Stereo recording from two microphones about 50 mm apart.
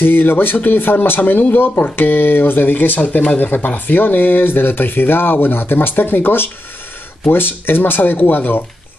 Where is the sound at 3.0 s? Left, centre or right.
Left.